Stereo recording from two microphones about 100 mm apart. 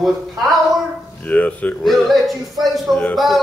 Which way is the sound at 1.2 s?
15° left (ahead or behind).